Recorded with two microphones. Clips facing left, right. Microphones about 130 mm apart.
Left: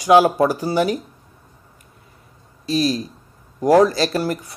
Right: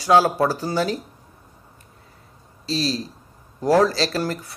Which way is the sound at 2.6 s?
30° right (ahead or behind).